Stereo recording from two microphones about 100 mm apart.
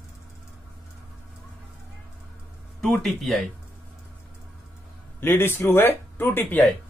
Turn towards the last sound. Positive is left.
turn(degrees=20)  # may be behind; listen again after turning